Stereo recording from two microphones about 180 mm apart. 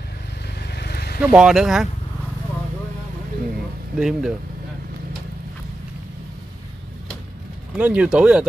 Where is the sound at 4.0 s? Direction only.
5° right (ahead or behind).